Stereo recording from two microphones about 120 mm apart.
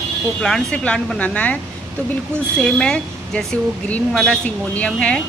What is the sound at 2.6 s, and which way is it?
Speech, 5° left (ahead or behind).